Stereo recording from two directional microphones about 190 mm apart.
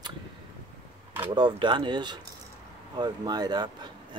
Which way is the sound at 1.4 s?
25° right (ahead or behind).